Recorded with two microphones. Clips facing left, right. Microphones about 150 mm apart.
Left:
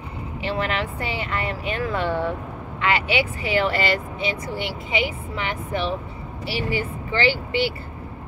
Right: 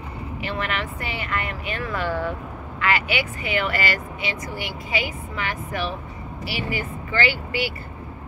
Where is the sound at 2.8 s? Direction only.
30° left (ahead or behind).